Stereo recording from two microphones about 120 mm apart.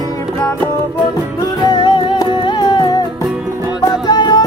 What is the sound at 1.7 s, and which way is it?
Music, 40° left (ahead or behind).